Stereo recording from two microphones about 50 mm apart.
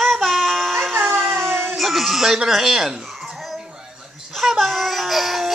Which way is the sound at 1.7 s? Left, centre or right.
Centre.